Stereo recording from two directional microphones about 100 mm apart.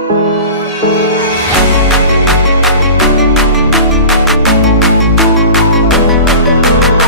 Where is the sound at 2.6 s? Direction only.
Centre (ahead or behind).